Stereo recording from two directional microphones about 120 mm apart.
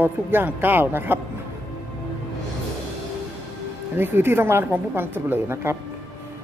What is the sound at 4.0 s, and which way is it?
A woman's voice, 20° right (ahead or behind).